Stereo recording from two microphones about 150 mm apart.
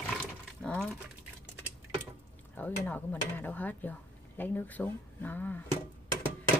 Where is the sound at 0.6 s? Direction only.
5° left (ahead or behind).